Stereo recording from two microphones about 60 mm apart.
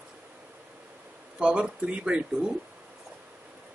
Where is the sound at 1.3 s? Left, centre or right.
Centre.